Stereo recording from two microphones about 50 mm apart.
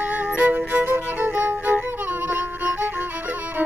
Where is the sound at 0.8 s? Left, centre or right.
Right.